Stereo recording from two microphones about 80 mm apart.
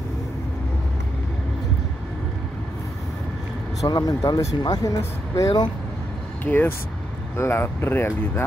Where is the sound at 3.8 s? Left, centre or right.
Left.